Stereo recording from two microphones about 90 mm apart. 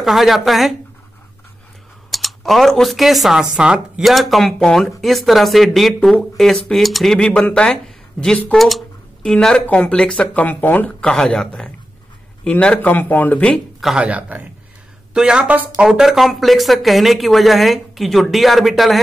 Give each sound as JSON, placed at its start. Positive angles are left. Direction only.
{"t": 0.0, "sound": "speech", "side_deg": 0}
{"t": 2.0, "sound": "speech", "side_deg": 0}
{"t": 11.1, "sound": "speech", "side_deg": 10}
{"t": 13.9, "sound": "speech", "side_deg": -15}
{"t": 15.9, "sound": "speech", "side_deg": -5}